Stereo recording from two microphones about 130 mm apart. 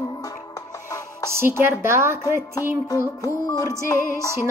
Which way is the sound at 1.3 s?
20° right (ahead or behind).